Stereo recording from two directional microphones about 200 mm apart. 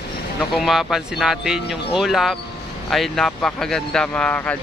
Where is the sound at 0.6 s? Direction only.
Centre (ahead or behind).